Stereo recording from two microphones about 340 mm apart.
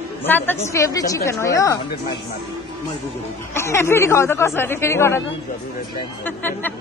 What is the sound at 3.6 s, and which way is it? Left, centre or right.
Speech, centre.